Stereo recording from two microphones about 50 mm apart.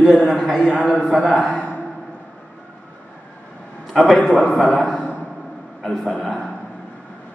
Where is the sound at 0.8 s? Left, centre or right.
Left.